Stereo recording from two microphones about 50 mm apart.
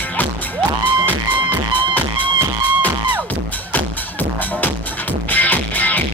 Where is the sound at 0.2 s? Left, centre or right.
Left.